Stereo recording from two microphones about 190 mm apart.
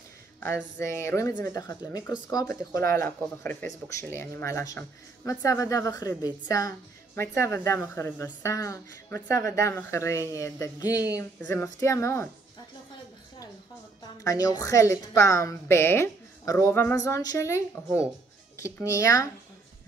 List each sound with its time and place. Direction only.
0.4 s a woman's voice: 15° left (ahead or behind)
14.2 s a woman's voice: 20° left (ahead or behind)